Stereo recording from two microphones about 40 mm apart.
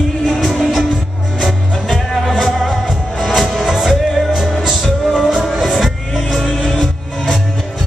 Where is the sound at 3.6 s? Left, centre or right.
Centre.